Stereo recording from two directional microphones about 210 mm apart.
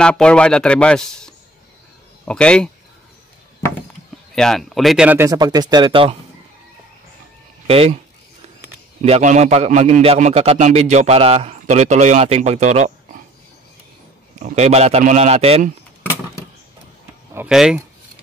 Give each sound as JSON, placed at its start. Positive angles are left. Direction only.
{"t": 0.0, "sound": "a man's voice", "side_deg": 5}
{"t": 4.4, "sound": "speech", "side_deg": 0}
{"t": 7.6, "sound": "speech", "side_deg": -30}
{"t": 9.0, "sound": "a man's voice", "side_deg": -30}
{"t": 14.4, "sound": "a man's voice", "side_deg": -30}
{"t": 17.3, "sound": "speech", "side_deg": -5}